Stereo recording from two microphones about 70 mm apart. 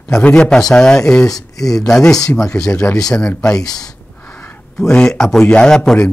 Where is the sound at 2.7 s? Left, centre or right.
Left.